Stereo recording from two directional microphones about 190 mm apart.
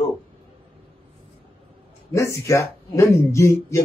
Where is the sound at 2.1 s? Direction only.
15° left (ahead or behind).